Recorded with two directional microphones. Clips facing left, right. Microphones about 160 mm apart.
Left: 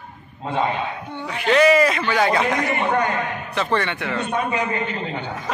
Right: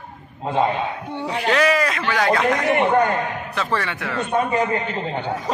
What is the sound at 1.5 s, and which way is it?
A man's voice, centre (ahead or behind).